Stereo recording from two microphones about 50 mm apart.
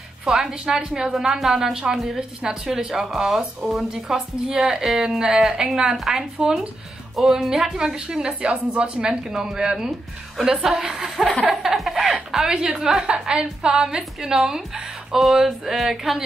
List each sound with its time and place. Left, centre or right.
0.2 s a woman's voice: centre